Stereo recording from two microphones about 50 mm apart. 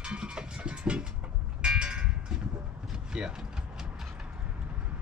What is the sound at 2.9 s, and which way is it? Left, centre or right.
Mechanisms, centre.